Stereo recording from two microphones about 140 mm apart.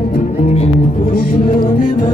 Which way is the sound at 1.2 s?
85° left.